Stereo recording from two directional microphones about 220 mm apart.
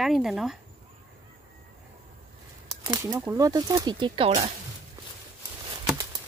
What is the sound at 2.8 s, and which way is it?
Speech, 15° right (ahead or behind).